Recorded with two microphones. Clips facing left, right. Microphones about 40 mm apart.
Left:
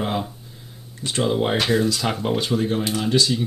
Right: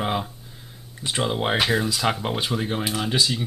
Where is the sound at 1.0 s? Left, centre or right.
Centre.